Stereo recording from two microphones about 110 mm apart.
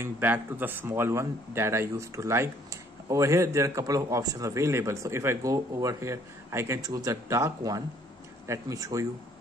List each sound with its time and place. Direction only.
0.0 s speech: 15° right (ahead or behind)